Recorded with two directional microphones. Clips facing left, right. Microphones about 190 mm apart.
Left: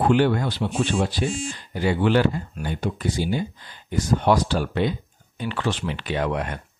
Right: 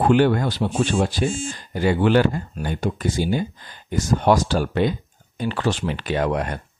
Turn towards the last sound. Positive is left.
turn(degrees=-40)  # may be behind; listen again after turning